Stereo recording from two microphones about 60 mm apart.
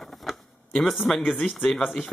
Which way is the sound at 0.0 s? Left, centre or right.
Centre.